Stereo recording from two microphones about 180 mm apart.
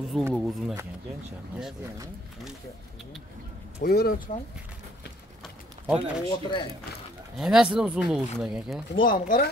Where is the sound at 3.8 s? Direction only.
60° left (ahead or behind).